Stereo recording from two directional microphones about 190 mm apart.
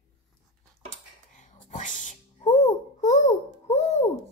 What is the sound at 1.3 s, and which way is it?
Babbling, 40° left (ahead or behind).